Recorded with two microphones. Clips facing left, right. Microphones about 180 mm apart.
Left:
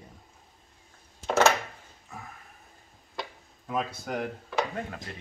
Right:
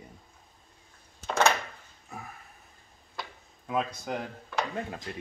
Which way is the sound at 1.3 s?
5° left (ahead or behind).